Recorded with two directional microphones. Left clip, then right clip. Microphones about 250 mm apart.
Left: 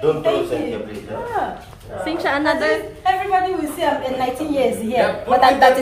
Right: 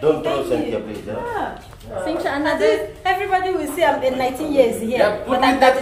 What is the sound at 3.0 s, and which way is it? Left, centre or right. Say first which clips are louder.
Speech: left 3 dB; centre.